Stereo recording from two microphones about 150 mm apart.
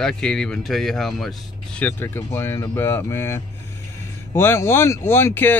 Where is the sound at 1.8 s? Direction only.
15° left (ahead or behind).